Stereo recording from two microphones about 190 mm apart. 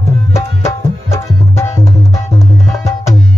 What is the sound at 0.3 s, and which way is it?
Tabla, 15° left (ahead or behind).